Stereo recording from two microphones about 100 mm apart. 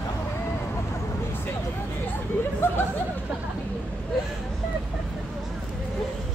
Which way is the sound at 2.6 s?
25° left (ahead or behind).